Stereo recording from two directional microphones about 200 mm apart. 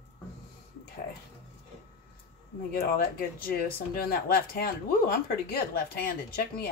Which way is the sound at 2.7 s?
50° left (ahead or behind).